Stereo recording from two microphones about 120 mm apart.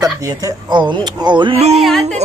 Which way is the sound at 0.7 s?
40° right (ahead or behind).